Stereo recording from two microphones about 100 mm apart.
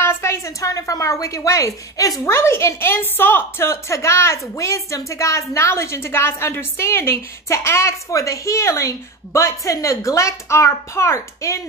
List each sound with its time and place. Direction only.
0.0 s a woman's voice: 30° left (ahead or behind)